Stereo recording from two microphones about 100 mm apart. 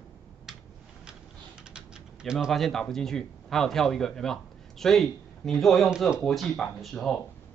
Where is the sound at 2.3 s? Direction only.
Centre (ahead or behind).